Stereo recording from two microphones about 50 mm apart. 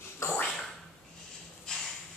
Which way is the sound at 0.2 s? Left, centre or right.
Left.